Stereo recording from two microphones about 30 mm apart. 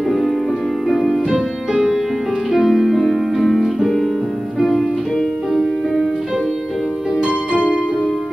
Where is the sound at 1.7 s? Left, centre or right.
Centre.